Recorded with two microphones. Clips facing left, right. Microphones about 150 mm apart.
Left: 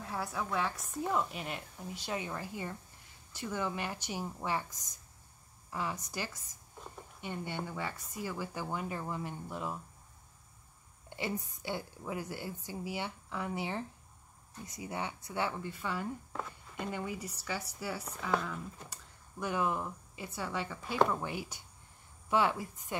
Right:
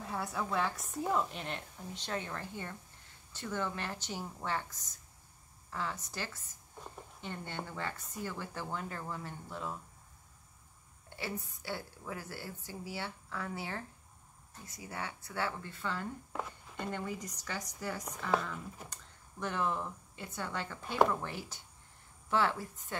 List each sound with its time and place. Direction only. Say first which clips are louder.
0.0 s a woman's voice: even; centre (ahead or behind)
11.1 s a woman's voice: left 3 dB; 20° left (ahead or behind)